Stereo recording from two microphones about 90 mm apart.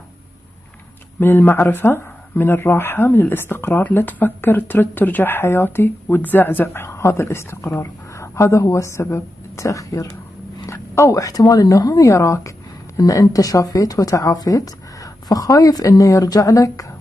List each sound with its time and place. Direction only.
1.2 s speech: 25° left (ahead or behind); by 16.9 s 40° left (ahead or behind)